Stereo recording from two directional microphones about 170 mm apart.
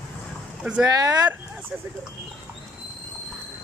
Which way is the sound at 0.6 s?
5° right (ahead or behind).